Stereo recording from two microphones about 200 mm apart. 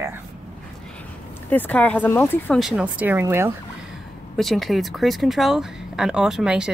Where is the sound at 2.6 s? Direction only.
5° right (ahead or behind).